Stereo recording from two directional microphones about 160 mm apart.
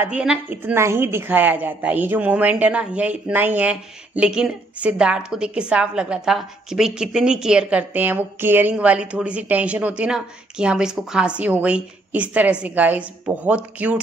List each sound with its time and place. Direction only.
0.0 s a woman's voice: 5° right (ahead or behind)